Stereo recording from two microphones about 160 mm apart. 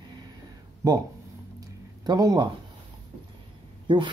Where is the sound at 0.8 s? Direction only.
25° right (ahead or behind).